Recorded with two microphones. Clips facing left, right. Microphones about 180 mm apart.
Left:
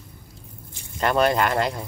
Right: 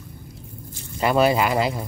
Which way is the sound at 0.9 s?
5° right (ahead or behind).